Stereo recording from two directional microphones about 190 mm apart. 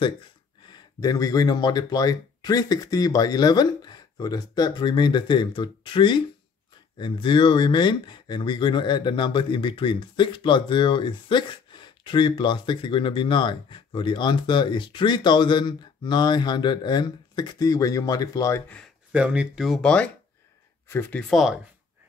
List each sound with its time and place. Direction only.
0.7 s speech: 20° left (ahead or behind)
19.1 s speech: 5° right (ahead or behind)